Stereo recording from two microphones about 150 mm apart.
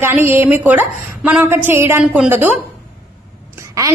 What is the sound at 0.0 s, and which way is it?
A woman's voice, 15° right (ahead or behind).